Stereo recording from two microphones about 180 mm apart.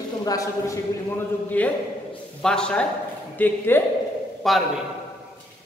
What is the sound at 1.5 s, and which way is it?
A man's voice, 10° left (ahead or behind).